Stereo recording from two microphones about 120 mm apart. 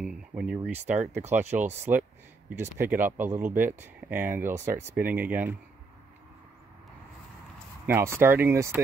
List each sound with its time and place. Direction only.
0.0 s speech: 5° right (ahead or behind)
7.8 s speech: 20° right (ahead or behind)